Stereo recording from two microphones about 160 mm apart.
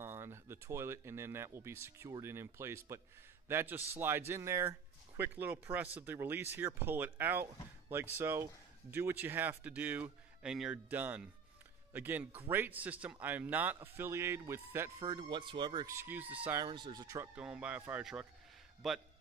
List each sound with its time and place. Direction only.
0.0 s speech: 15° right (ahead or behind)
15.0 s speech: 30° right (ahead or behind)
15.9 s speech: 15° right (ahead or behind)
16.6 s speech: 30° right (ahead or behind)
17.4 s a man's voice: 5° right (ahead or behind)